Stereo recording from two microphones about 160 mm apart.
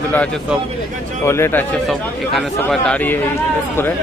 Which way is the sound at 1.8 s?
Centre (ahead or behind).